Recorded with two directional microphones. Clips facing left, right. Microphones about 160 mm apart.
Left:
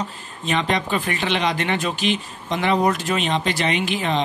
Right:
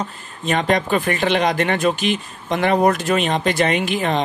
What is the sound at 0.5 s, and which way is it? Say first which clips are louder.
Speech: right 4 dB; 45° right (ahead or behind).